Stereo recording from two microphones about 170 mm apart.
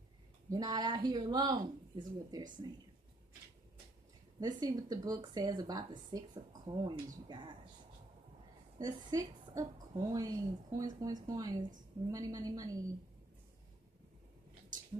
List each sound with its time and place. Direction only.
0.5 s a woman's voice: 20° right (ahead or behind)
4.4 s a woman's voice: 20° right (ahead or behind)
8.7 s a woman's voice: 20° right (ahead or behind)